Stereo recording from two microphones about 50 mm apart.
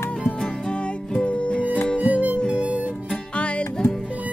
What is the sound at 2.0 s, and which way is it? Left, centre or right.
Music, right.